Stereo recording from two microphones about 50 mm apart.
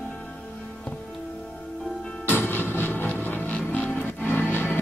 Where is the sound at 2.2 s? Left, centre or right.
Left.